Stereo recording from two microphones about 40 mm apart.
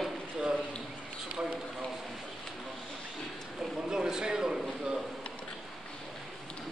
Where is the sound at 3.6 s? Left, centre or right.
Centre.